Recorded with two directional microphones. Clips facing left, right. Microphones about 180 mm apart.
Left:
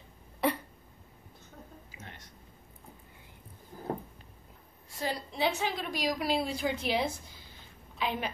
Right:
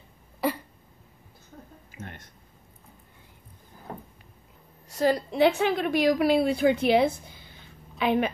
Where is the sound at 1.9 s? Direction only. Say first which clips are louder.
Right 7 dB; 55° right (ahead or behind).